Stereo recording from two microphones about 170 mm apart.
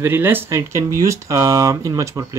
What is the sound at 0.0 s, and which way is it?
Speech, 10° right (ahead or behind).